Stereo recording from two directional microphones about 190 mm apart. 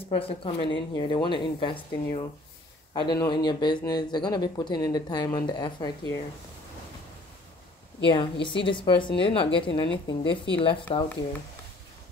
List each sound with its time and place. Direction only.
0.1 s speech: 30° left (ahead or behind)
8.0 s speech: 25° left (ahead or behind)